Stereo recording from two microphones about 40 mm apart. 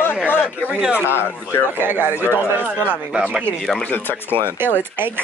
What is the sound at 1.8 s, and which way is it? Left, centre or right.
Speech, right.